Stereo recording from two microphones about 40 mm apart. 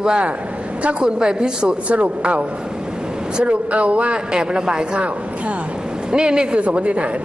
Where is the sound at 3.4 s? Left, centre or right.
Right.